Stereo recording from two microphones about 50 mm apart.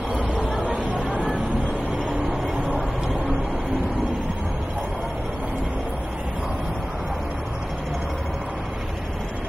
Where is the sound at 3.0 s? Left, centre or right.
Centre.